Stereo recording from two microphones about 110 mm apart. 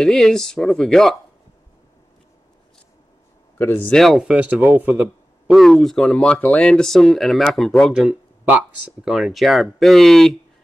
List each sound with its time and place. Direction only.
0.0 s speech: 5° left (ahead or behind)
3.5 s speech: 20° left (ahead or behind)
3.9 s speech: centre (ahead or behind)
5.5 s speech: centre (ahead or behind)
7.9 s speech: 10° right (ahead or behind)